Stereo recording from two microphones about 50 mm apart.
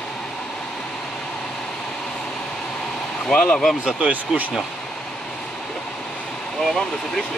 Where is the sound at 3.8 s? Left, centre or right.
Right.